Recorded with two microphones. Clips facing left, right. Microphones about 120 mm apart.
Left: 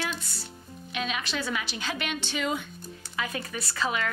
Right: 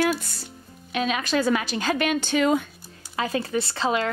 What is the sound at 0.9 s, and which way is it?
Speech, 45° right (ahead or behind).